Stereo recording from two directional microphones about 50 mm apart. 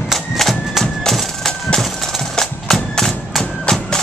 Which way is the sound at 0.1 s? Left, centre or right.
Centre.